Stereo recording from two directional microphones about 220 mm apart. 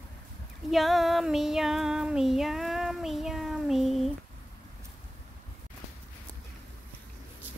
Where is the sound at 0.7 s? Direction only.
Centre (ahead or behind).